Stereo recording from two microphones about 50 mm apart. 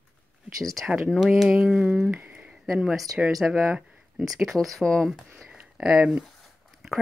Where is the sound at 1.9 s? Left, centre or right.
Right.